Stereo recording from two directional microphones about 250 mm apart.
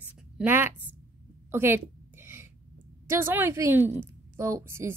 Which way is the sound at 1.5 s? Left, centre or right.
Centre.